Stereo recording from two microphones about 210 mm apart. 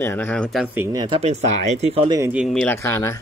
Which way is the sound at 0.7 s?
10° right (ahead or behind).